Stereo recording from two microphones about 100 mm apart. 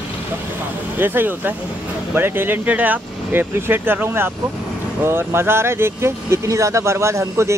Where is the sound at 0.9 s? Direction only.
20° right (ahead or behind).